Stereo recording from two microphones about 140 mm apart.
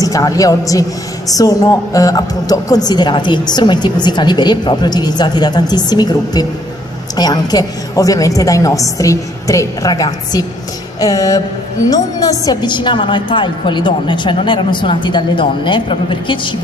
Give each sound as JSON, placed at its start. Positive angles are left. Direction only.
{"t": 0.0, "sound": "a woman's voice", "side_deg": 25}